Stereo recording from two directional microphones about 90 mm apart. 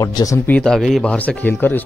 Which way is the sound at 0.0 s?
40° left (ahead or behind).